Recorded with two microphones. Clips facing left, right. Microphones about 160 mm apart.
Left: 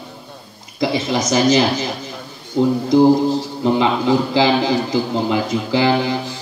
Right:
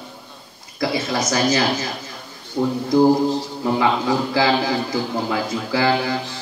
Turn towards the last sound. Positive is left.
turn(degrees=20)  # may be behind; listen again after turning